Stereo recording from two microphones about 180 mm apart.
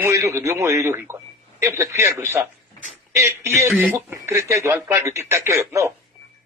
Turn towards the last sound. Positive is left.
turn(degrees=-15)  # may be behind; listen again after turning